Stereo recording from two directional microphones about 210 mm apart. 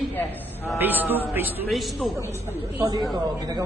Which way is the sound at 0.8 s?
10° right (ahead or behind).